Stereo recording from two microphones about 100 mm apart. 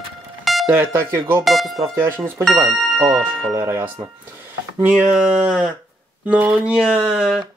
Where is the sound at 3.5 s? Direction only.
25° right (ahead or behind).